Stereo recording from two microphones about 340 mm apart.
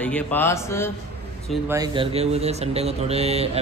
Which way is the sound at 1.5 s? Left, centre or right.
Centre.